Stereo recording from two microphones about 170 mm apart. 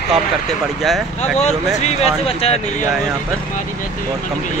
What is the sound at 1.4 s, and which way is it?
Speech, 40° left (ahead or behind).